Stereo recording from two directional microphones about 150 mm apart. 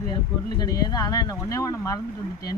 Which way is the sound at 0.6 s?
25° left (ahead or behind).